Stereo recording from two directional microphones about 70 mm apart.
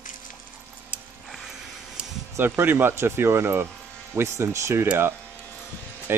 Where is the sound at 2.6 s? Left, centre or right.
Right.